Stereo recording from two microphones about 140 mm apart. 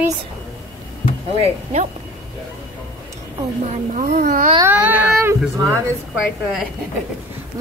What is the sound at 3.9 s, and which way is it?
Speech, 70° right (ahead or behind).